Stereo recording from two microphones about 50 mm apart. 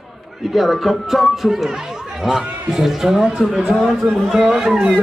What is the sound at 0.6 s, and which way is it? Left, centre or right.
Speech, centre.